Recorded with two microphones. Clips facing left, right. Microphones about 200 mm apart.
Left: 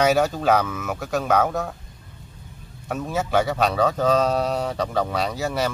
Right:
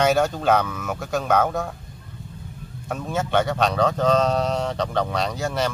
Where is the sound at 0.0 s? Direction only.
Centre (ahead or behind).